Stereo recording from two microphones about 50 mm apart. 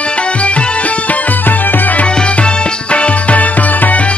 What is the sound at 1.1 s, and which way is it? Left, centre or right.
Music, left.